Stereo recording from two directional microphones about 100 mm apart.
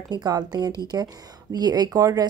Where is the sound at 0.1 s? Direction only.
45° right (ahead or behind).